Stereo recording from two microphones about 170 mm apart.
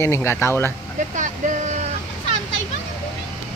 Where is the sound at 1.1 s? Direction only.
45° right (ahead or behind).